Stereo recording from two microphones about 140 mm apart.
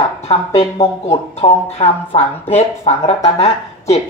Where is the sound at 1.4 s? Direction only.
50° left (ahead or behind).